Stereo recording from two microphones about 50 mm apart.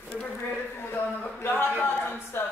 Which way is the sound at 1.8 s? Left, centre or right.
Left.